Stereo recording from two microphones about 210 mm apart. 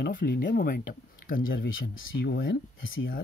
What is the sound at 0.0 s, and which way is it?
Speech, 45° left (ahead or behind).